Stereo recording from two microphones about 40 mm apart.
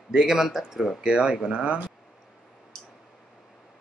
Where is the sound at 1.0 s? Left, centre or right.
Right.